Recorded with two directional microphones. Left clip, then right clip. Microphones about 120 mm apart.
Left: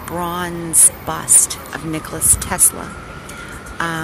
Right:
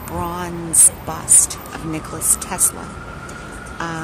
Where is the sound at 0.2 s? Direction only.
15° left (ahead or behind).